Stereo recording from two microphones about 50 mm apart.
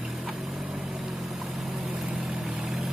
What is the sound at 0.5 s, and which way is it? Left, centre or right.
Vehicle, right.